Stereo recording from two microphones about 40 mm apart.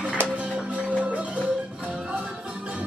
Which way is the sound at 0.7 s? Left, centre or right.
Right.